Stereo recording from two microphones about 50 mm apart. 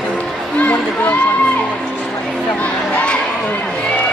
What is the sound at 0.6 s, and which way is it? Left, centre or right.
Speech, left.